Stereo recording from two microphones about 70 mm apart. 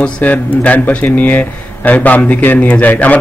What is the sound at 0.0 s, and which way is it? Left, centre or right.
Speech, left.